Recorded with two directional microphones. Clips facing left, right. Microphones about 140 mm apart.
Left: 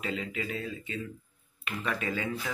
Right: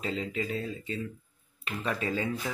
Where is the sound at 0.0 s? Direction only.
35° right (ahead or behind).